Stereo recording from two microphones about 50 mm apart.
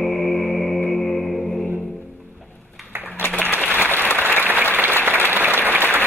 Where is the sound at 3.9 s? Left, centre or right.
Left.